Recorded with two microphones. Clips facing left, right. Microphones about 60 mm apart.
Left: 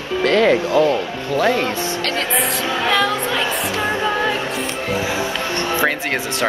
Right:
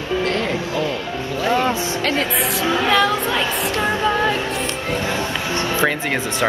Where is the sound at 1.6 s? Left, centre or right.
Centre.